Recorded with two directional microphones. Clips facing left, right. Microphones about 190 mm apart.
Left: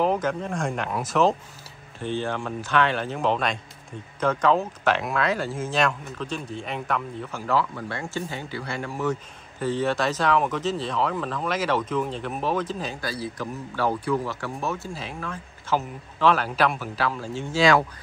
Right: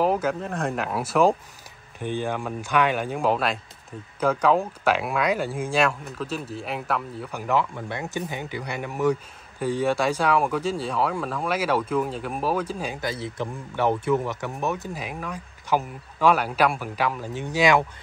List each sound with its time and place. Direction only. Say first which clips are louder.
0.0 s speech: right 1 dB; 5° right (ahead or behind)
13.1 s a man's voice: even; 20° right (ahead or behind)